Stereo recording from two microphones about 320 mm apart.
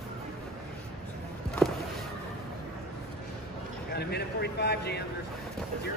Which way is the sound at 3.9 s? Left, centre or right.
Left.